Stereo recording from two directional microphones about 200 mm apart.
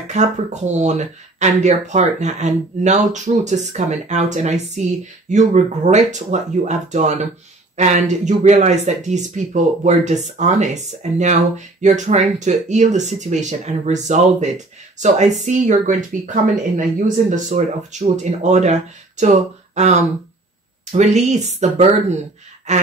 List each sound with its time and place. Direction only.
0.1 s speech: 35° right (ahead or behind)
17.5 s speech: 35° right (ahead or behind)